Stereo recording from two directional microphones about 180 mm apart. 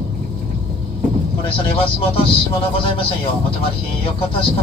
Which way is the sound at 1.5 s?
30° left (ahead or behind).